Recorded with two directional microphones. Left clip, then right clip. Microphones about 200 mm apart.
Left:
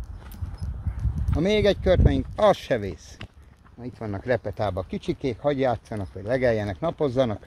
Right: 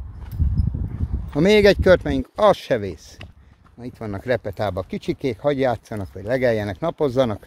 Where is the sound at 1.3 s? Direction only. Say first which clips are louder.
Right 7 dB; 40° right (ahead or behind).